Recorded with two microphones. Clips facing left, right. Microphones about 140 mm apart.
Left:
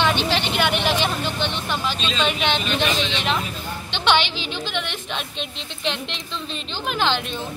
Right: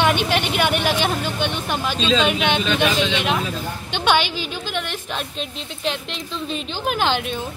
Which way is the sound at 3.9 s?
10° right (ahead or behind).